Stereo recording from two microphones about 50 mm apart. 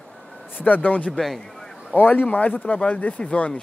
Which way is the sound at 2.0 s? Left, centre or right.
Left.